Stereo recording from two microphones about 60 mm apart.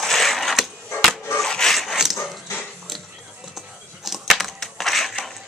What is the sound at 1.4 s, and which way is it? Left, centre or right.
Dog, centre.